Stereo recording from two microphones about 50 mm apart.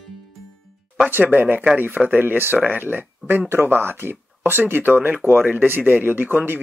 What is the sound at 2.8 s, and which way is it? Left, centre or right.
Speech, right.